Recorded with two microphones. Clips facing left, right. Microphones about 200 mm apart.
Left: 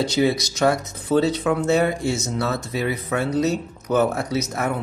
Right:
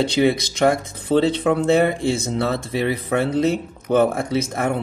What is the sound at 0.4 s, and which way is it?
Speech, 55° right (ahead or behind).